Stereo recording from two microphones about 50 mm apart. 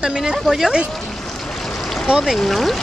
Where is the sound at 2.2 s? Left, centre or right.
Centre.